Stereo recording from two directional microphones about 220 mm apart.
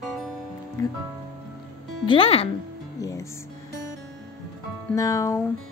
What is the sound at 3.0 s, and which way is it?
Music, 15° left (ahead or behind).